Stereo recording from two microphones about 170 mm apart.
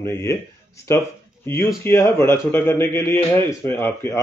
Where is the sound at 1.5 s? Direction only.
15° left (ahead or behind).